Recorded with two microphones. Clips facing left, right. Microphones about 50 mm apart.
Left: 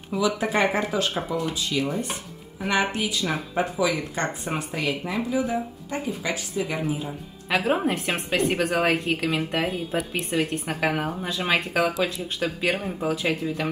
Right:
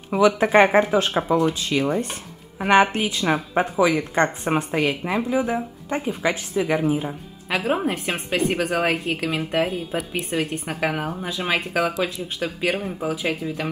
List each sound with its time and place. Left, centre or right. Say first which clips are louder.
0.1 s speech: right 7 dB; right
7.4 s a woman's voice: even; centre